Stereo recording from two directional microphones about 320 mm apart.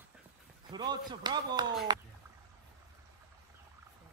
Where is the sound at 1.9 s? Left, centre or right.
Centre.